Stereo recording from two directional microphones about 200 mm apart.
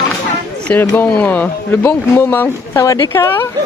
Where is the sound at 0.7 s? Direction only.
10° left (ahead or behind).